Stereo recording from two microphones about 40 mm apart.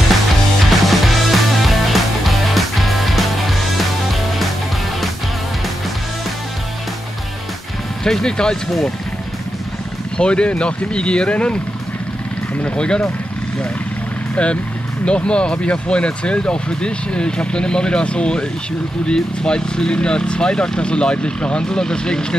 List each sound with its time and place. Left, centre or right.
0.8 s music: centre
8.0 s speech: centre
10.1 s speech: left
12.6 s speech: left
14.3 s speech: left